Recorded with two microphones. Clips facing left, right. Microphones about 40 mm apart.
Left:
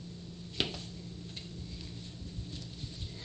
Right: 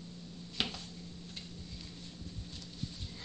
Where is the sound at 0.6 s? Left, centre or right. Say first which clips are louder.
Left 2 dB; left.